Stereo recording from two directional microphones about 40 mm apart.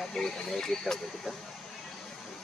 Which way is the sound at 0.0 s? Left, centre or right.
Centre.